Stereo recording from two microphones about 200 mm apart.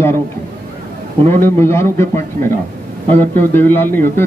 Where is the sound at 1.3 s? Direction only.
10° left (ahead or behind).